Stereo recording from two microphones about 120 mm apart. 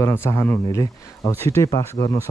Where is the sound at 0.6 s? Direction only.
30° left (ahead or behind).